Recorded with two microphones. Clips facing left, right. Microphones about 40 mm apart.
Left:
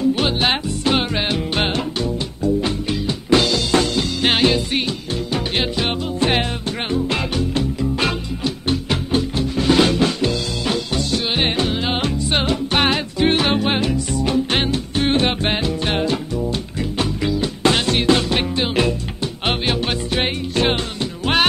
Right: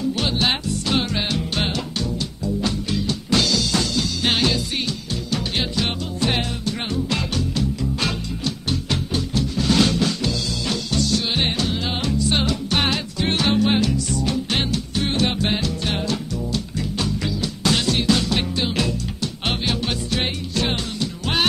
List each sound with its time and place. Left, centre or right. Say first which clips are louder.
0.1 s music: left 3 dB; left